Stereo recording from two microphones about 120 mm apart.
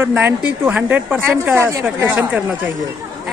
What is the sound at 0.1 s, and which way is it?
Speech, 10° right (ahead or behind).